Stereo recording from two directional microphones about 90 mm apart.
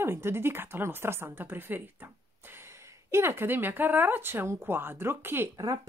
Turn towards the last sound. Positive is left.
turn(degrees=-50)  # may be behind; listen again after turning